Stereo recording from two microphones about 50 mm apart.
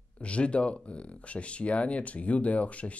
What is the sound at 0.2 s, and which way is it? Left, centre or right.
Speech, left.